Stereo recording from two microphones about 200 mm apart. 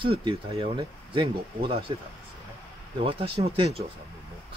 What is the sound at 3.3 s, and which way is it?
Speech, 25° right (ahead or behind).